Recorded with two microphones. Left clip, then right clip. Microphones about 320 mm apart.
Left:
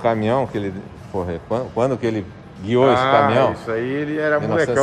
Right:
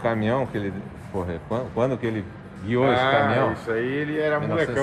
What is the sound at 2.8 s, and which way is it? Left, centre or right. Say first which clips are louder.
Speech: left 5 dB; left.